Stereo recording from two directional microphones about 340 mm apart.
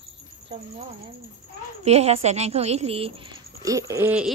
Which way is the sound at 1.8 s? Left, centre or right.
Centre.